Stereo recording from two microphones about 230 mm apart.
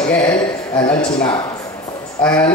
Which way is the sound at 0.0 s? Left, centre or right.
Centre.